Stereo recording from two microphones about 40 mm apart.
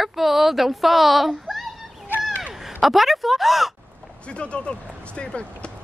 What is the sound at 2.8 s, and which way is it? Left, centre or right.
Speech, centre.